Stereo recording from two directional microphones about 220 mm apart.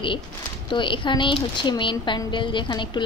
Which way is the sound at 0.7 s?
20° left (ahead or behind).